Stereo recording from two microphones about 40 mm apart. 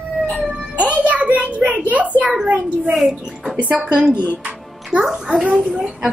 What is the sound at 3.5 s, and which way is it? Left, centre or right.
Speech, right.